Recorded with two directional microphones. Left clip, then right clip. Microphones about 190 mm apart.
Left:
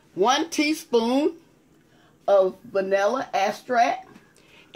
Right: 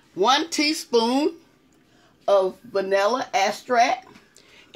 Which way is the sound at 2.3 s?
20° right (ahead or behind).